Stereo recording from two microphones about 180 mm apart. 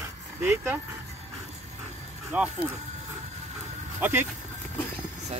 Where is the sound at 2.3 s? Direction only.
10° right (ahead or behind).